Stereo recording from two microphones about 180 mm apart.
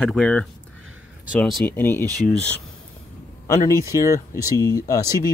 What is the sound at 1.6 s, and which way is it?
Speech, 10° left (ahead or behind).